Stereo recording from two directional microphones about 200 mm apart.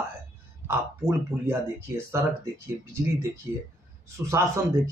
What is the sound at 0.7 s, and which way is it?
Speech, 15° right (ahead or behind).